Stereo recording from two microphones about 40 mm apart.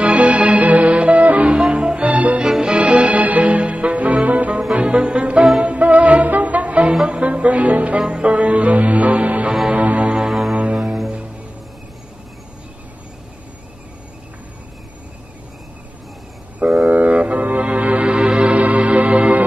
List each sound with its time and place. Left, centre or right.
0.0 s music: right
1.5 s music: right
2.4 s music: right
5.6 s music: right
7.1 s brass instrument: right
8.1 s music: right
10.2 s music: centre
16.6 s vehicle: centre
17.1 s music: right